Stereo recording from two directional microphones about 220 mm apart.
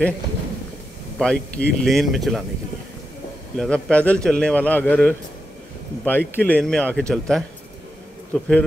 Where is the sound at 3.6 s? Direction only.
5° left (ahead or behind).